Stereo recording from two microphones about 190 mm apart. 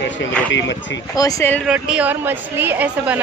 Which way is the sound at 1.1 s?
20° left (ahead or behind).